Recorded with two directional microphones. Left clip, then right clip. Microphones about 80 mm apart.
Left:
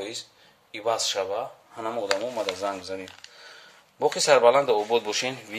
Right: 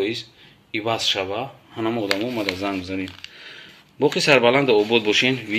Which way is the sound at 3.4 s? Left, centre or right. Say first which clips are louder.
Right 6 dB; left.